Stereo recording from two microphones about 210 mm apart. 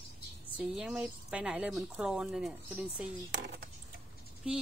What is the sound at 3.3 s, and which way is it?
Speech, 50° right (ahead or behind).